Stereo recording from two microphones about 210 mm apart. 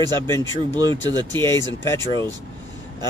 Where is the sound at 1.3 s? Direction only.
10° left (ahead or behind).